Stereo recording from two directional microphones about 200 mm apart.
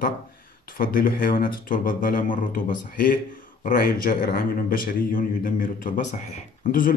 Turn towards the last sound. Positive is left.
turn(degrees=45)  # may be behind; listen again after turning